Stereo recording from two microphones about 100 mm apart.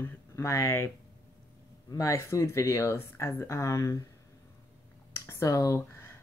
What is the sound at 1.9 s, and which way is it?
Speech, 35° left (ahead or behind).